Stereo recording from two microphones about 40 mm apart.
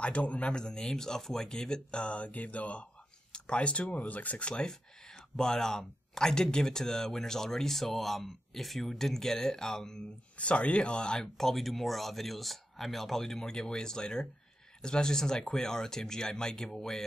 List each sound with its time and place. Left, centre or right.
0.0 s speech: left
0.5 s speech: left
5.3 s speech: centre
10.3 s speech: left
11.3 s speech: centre